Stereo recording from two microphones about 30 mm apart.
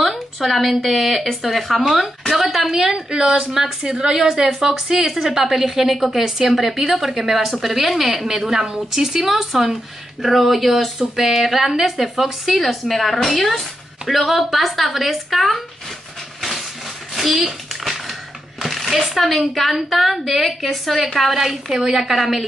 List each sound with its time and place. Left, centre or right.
0.0 s a woman's voice: centre
2.7 s a woman's voice: centre
5.0 s a woman's voice: centre
17.1 s a sound: centre
18.6 s a sound: centre
19.0 s a woman's voice: centre
21.4 s a woman's voice: centre